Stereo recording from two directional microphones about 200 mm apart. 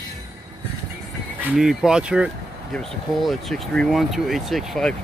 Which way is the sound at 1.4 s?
Centre (ahead or behind).